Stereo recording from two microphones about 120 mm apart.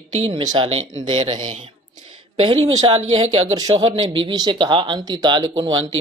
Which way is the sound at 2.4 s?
55° right (ahead or behind).